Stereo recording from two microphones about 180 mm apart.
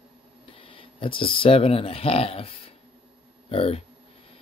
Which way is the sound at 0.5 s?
30° left (ahead or behind).